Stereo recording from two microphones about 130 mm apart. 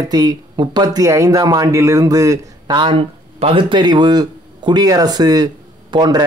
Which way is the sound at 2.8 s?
45° right (ahead or behind).